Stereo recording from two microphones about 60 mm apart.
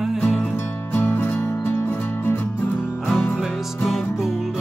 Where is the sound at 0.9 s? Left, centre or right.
Left.